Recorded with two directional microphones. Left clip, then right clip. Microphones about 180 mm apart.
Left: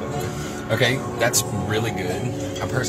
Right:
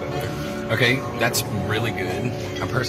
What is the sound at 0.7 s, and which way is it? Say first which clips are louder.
Speech: even; 20° left (ahead or behind).